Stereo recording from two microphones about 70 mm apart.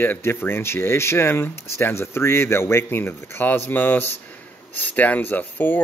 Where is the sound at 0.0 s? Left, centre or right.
Left.